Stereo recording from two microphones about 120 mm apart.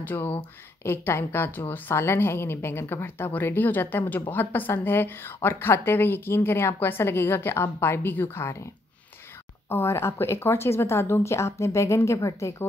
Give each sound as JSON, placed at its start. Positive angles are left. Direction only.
{"t": 0.0, "sound": "a woman's voice", "side_deg": 15}
{"t": 9.7, "sound": "a woman's voice", "side_deg": 20}